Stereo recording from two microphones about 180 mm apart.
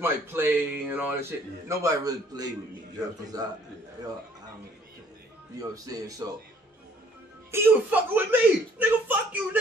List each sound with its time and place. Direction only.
0.0 s a man's voice: 10° right (ahead or behind)
5.6 s a man's voice: 20° right (ahead or behind)
7.5 s speech: 10° right (ahead or behind)